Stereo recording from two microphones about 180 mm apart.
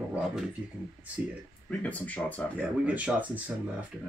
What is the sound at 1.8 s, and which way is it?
Speech, 10° left (ahead or behind).